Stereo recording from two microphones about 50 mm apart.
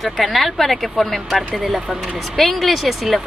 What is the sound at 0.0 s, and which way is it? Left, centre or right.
Speech, centre.